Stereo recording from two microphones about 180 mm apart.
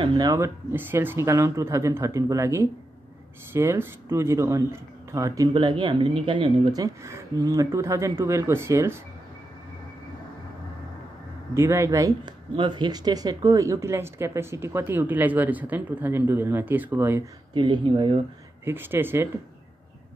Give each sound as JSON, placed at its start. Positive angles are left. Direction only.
{"t": 0.0, "sound": "speech", "side_deg": -25}
{"t": 11.5, "sound": "speech", "side_deg": -15}
{"t": 17.6, "sound": "speech", "side_deg": -25}
{"t": 18.6, "sound": "speech", "side_deg": -15}